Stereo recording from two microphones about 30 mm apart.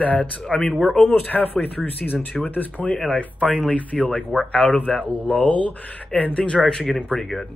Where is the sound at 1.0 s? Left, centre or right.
Left.